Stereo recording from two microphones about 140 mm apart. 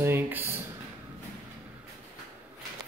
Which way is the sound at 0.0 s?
15° right (ahead or behind).